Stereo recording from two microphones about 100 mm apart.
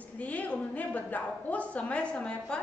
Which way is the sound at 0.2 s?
15° left (ahead or behind).